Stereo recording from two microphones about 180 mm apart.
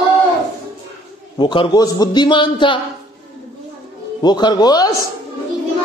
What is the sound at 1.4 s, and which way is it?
A man's voice, 25° left (ahead or behind).